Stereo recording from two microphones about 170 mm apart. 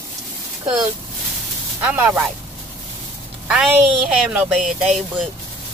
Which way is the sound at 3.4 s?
5° right (ahead or behind).